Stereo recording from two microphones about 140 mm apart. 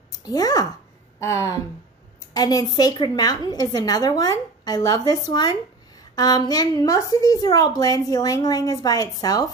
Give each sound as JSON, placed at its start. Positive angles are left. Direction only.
{"t": 0.1, "sound": "a woman's voice", "side_deg": 25}